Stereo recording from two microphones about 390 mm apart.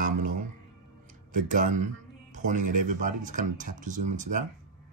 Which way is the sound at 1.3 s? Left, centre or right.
Centre.